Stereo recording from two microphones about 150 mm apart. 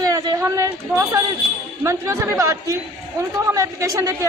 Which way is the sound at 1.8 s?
20° right (ahead or behind).